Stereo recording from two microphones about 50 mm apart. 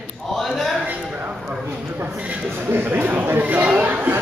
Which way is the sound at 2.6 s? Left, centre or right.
Right.